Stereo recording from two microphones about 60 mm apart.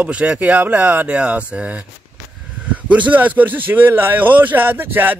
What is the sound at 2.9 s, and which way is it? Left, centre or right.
Speech, right.